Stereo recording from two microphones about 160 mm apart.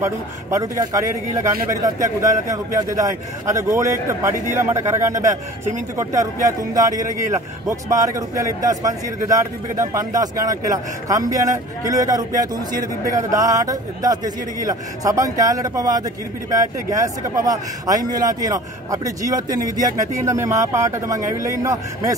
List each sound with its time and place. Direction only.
0.0 s a man's voice: 20° right (ahead or behind)